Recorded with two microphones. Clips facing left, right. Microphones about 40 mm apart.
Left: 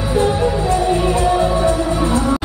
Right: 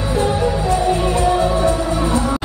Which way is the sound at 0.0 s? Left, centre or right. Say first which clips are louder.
Left 2 dB; centre.